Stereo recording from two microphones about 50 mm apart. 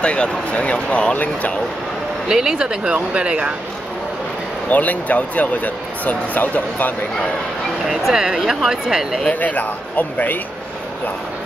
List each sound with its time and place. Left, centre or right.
0.0 s speech: left
2.2 s speech: centre
4.6 s speech: left
7.8 s speech: centre
9.3 s speech: left